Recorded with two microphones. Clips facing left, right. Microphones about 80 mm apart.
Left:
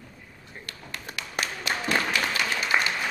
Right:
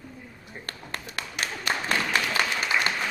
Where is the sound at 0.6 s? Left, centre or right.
Right.